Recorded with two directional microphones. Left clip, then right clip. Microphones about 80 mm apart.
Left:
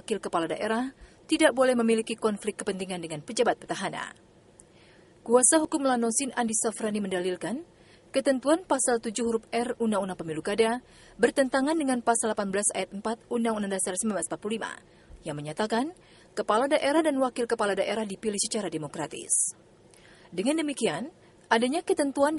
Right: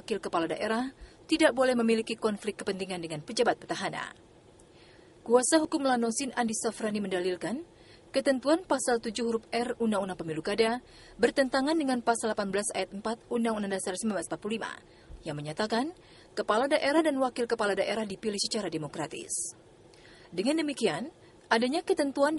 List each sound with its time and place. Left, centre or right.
0.0 s a woman's voice: left
5.2 s a woman's voice: left
20.3 s a woman's voice: left